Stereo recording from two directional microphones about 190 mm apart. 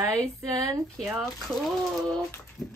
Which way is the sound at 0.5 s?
15° right (ahead or behind).